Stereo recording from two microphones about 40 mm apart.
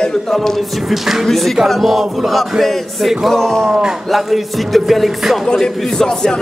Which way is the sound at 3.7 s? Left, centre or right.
Centre.